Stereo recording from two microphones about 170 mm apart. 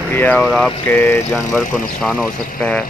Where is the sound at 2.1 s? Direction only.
5° left (ahead or behind).